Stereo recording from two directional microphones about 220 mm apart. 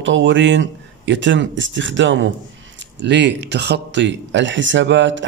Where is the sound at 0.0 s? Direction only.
55° right (ahead or behind).